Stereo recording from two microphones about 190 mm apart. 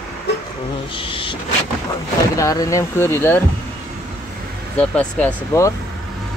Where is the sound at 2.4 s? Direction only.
15° left (ahead or behind).